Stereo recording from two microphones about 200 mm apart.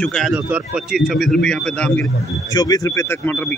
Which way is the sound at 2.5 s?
20° left (ahead or behind).